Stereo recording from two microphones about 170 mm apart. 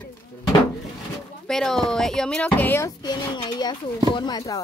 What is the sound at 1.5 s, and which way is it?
Speech, 5° left (ahead or behind).